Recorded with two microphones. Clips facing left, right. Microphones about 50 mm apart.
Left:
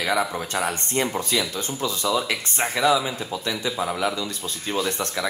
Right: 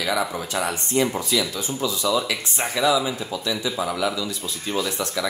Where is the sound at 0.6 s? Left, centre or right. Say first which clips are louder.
Right 2 dB; left.